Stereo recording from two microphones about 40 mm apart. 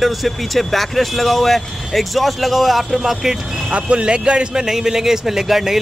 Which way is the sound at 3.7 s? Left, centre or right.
Right.